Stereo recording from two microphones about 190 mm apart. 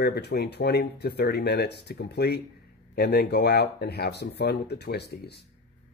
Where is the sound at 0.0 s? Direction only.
60° left (ahead or behind).